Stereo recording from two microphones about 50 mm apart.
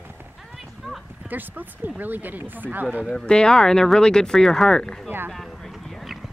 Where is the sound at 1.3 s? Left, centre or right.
Right.